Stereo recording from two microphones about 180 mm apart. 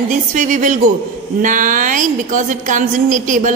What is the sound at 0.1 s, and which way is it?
A woman's voice, 45° right (ahead or behind).